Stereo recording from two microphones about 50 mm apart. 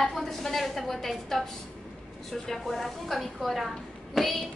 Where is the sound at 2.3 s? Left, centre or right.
Centre.